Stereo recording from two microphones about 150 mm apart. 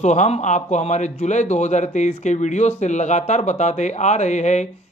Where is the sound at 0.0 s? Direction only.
50° left (ahead or behind).